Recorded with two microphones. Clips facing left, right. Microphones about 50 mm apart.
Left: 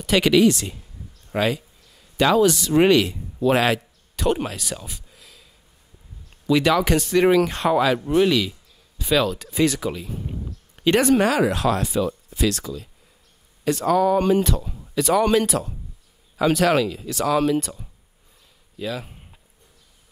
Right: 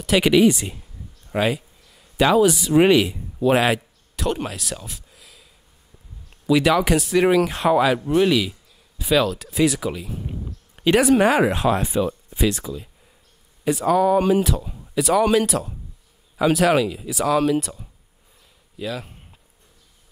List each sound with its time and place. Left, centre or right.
0.0 s speech: centre
11.2 s speech: right; by 19.1 s centre